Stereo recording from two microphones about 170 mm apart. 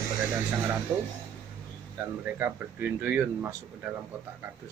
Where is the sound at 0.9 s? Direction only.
10° right (ahead or behind).